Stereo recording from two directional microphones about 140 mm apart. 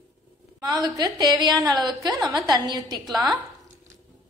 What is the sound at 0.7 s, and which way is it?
A woman's voice, 25° right (ahead or behind).